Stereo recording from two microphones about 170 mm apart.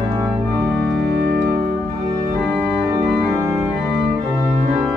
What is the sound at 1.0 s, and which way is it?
Organ, 70° right (ahead or behind).